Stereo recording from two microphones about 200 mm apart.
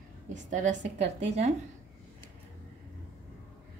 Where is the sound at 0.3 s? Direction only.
40° right (ahead or behind).